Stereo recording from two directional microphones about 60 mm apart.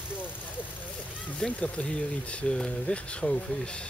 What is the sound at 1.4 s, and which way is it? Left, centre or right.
Speech, left.